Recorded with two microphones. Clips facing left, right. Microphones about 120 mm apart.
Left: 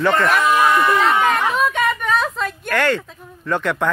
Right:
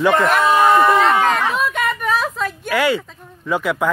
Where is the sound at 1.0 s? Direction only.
Centre (ahead or behind).